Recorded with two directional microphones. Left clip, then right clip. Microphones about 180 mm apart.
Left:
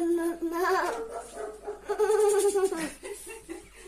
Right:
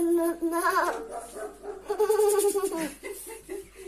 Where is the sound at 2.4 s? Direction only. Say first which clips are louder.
Left 1 dB; 15° left (ahead or behind).